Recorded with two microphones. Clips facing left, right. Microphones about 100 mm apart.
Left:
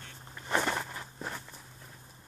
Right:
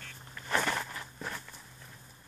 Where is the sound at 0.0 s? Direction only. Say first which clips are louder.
Even; 20° left (ahead or behind).